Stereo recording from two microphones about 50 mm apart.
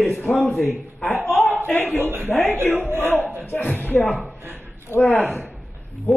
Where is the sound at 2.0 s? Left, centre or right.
Right.